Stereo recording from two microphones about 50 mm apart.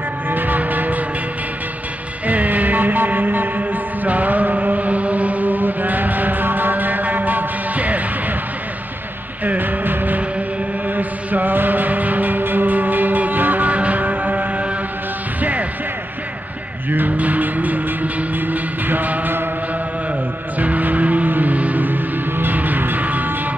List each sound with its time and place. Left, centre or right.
0.3 s music: right
2.2 s music: right
9.4 s music: right
16.9 s music: right
20.5 s music: right